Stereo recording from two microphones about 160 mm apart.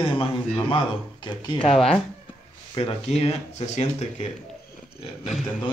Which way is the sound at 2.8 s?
40° left (ahead or behind).